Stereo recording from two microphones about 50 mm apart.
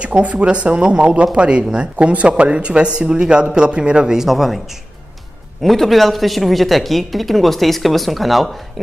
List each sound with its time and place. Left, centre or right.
0.0 s a man's voice: right; by 4.6 s centre
5.6 s speech: centre